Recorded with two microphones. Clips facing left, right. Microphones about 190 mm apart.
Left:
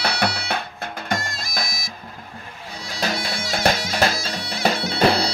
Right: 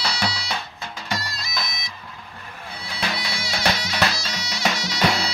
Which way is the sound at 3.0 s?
45° left (ahead or behind).